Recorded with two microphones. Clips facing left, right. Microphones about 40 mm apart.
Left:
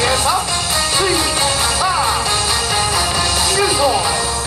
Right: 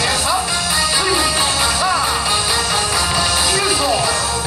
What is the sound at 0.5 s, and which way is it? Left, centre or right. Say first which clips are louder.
Music: even; centre.